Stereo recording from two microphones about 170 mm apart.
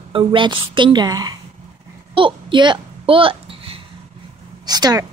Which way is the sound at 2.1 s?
30° right (ahead or behind).